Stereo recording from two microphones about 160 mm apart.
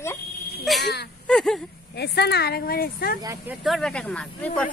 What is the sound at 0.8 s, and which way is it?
Speech, 90° left.